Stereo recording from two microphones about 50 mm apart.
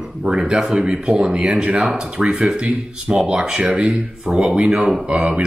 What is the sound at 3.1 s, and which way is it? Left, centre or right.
Speech, right.